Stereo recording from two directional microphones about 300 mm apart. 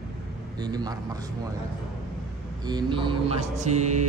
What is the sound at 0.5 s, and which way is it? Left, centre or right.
Speech, centre.